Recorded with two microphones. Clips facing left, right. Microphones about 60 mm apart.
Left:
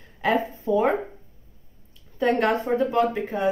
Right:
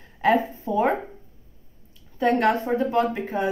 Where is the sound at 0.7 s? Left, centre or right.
Right.